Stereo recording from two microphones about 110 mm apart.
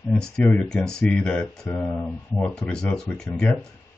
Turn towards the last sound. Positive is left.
turn(degrees=5)  # may be behind; listen again after turning